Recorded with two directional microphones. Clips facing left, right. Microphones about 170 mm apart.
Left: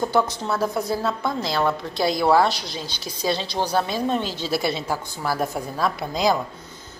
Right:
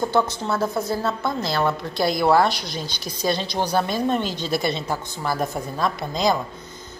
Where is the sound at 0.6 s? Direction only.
10° left (ahead or behind).